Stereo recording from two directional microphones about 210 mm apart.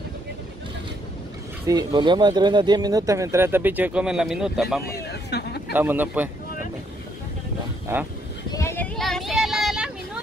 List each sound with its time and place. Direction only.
1.7 s speech: 15° right (ahead or behind); by 4.8 s centre (ahead or behind)
4.8 s a man's voice: 50° left (ahead or behind)
5.7 s speech: 10° right (ahead or behind)
7.9 s speech: 10° right (ahead or behind)
8.5 s child singing: 15° left (ahead or behind); by 9.8 s centre (ahead or behind)